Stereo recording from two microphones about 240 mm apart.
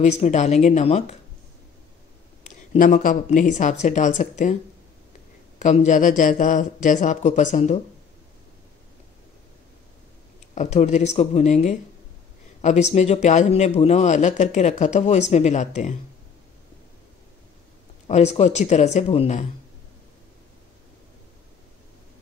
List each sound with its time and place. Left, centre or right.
0.0 s a man's voice: left
2.4 s a man's voice: left
5.6 s a man's voice: left
10.5 s a man's voice: left
18.0 s a man's voice: left